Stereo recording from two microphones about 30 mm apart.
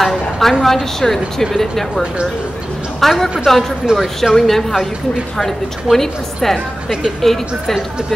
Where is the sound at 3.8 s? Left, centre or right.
Right.